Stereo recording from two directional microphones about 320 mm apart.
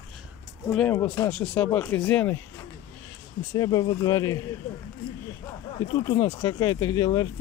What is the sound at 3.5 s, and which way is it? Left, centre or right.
Speech, centre.